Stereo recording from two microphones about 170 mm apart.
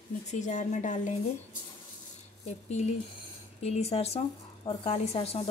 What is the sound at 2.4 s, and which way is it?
Speech, 40° left (ahead or behind).